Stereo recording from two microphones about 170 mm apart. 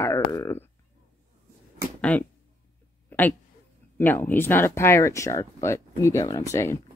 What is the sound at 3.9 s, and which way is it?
Speech, 10° left (ahead or behind).